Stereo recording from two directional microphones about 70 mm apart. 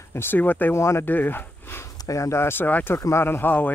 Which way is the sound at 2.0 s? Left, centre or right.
Left.